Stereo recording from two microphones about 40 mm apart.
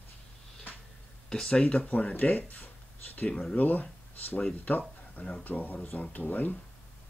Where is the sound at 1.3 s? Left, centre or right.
Centre.